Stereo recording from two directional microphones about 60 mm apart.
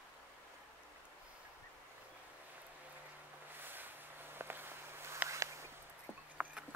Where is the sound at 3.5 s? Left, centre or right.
Right.